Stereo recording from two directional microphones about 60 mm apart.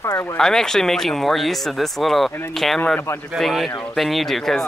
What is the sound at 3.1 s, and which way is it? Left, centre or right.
Speech, left.